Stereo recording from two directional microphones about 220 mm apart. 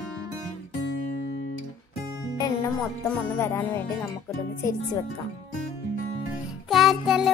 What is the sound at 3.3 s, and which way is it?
Music, 10° left (ahead or behind).